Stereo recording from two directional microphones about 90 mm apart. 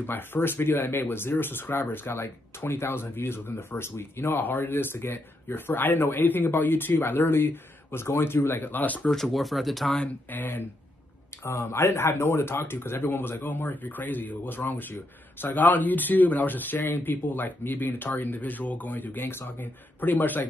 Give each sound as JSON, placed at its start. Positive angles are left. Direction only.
{"t": 0.0, "sound": "speech", "side_deg": 20}
{"t": 9.1, "sound": "speech", "side_deg": 0}
{"t": 9.9, "sound": "speech", "side_deg": 20}